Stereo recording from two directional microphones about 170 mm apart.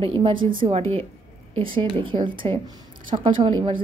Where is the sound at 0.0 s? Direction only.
35° right (ahead or behind).